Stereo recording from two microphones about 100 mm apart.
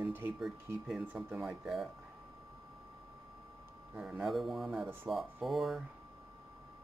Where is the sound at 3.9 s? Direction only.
15° right (ahead or behind).